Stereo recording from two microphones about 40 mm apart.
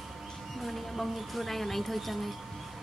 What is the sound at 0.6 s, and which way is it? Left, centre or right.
Speech, centre.